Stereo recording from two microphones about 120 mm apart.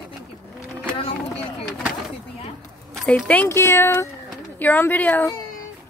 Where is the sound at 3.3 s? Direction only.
15° left (ahead or behind).